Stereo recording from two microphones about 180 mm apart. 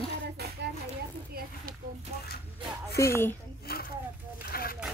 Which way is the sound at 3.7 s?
60° left (ahead or behind).